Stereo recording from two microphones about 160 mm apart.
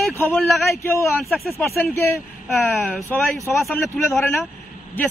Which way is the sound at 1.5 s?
15° left (ahead or behind).